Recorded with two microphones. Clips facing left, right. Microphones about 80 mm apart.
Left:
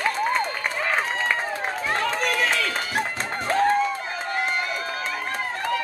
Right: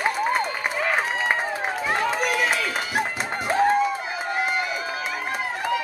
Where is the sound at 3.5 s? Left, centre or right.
Centre.